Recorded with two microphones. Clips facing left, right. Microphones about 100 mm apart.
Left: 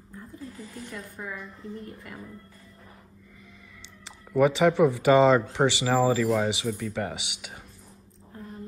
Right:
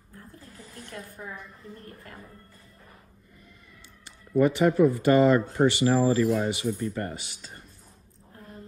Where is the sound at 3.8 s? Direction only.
90° left.